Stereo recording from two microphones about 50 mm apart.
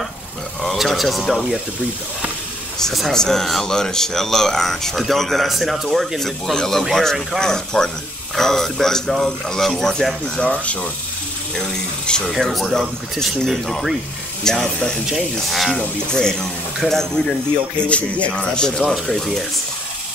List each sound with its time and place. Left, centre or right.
0.8 s speech: centre
2.8 s speech: centre; by 10.9 s left
11.5 s speech: centre
15.8 s speech: centre
17.8 s speech: left; by 19.4 s centre